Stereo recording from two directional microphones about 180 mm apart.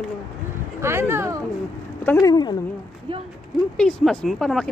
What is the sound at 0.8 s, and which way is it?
Speech, 15° right (ahead or behind).